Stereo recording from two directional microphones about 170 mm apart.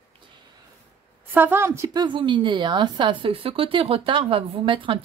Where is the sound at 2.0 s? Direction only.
30° right (ahead or behind).